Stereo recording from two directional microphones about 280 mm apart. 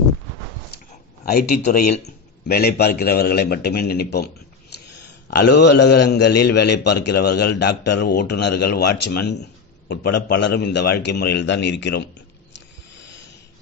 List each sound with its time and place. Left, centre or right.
1.2 s a man's voice: left
5.4 s a man's voice: left